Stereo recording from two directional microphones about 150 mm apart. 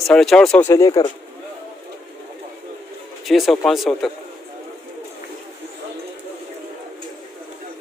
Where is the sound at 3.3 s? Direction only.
Centre (ahead or behind).